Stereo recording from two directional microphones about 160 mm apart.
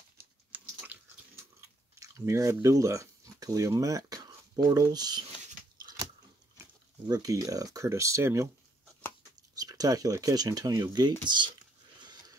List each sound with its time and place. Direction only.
0.5 s chewing: 10° right (ahead or behind)
4.6 s speech: 25° right (ahead or behind)
6.6 s speech: 20° right (ahead or behind)
9.6 s speech: 25° right (ahead or behind)
12.0 s a sound: 25° right (ahead or behind)